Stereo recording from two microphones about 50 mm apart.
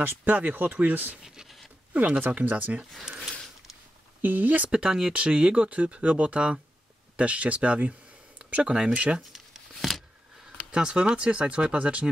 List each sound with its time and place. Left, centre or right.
0.0 s speech: right
1.2 s a sound: centre
2.0 s speech: right
3.0 s speech: centre
4.2 s speech: right
4.6 s speech: centre
9.2 s a sound: centre
10.7 s speech: right